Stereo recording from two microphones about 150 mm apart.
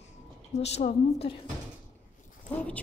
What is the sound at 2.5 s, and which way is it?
Speech, 10° left (ahead or behind).